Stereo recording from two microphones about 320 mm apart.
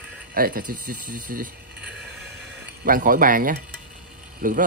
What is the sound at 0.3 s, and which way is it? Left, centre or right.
A man's voice, right.